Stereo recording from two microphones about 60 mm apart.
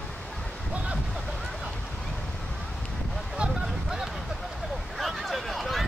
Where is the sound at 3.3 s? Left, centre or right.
Centre.